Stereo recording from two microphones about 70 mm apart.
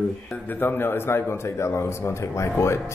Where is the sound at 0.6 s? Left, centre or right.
Left.